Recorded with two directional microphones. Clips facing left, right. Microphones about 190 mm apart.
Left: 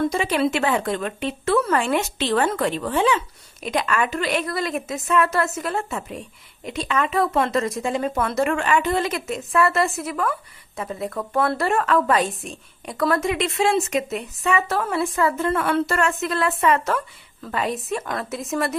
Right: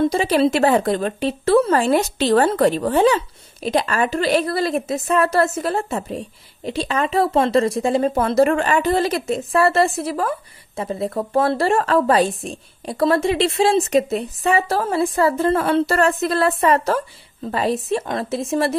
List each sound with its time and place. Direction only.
0.0 s a woman's voice: 35° right (ahead or behind)